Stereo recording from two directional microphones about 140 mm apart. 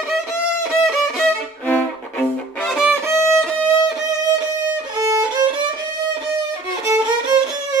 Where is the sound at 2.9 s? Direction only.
15° right (ahead or behind).